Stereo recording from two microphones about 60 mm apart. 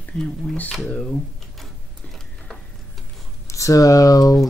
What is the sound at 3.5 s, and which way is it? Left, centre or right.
Speech, left.